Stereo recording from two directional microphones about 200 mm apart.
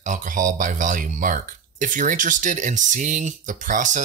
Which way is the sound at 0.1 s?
40° right (ahead or behind).